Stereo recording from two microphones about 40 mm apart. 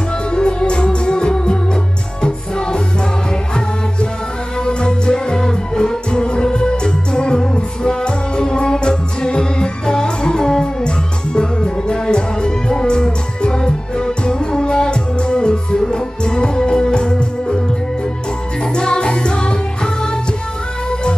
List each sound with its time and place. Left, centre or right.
0.3 s music: left
4.6 s music: left
18.8 s music: left